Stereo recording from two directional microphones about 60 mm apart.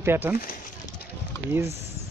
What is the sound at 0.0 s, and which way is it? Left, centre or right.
Speech, right.